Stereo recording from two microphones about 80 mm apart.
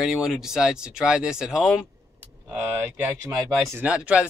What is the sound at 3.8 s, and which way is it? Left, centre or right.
Speech, centre.